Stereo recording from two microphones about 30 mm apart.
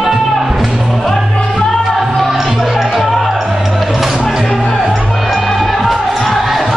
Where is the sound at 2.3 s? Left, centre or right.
Centre.